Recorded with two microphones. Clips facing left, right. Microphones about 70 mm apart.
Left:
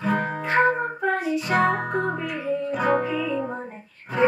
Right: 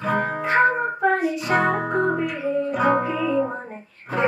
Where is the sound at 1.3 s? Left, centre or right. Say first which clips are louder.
Even; centre.